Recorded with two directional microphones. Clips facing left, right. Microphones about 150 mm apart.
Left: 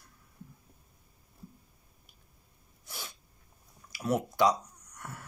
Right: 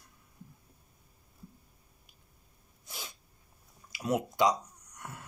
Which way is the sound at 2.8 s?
20° right (ahead or behind).